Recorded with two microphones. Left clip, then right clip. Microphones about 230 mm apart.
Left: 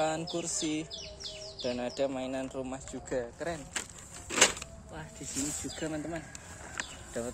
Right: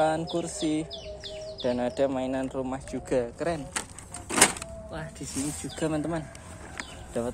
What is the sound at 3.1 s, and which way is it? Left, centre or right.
Speech, centre.